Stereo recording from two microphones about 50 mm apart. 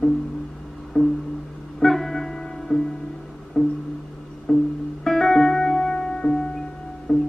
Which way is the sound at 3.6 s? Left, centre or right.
Centre.